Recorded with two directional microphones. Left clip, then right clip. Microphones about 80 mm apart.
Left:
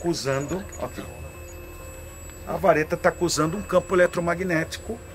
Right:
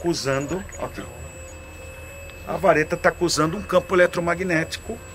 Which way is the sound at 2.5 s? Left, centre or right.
Centre.